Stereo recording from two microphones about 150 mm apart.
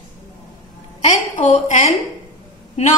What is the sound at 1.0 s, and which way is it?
A woman's voice, 55° left (ahead or behind).